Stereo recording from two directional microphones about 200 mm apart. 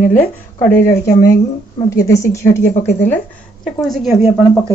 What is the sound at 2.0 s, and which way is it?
Speech, 15° left (ahead or behind).